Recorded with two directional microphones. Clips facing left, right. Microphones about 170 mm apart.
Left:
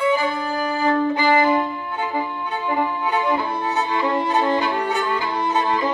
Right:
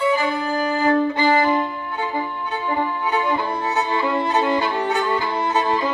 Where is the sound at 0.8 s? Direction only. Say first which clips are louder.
Even; 30° right (ahead or behind).